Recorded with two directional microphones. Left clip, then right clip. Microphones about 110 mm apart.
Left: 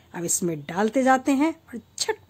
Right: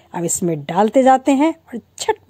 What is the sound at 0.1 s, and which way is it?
A woman's voice, 35° right (ahead or behind).